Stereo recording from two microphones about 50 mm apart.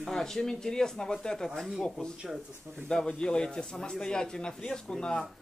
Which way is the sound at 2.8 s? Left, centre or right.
Centre.